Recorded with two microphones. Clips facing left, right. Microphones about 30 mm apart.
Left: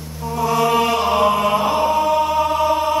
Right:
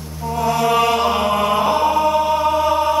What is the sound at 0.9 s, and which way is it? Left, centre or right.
Mantra, centre.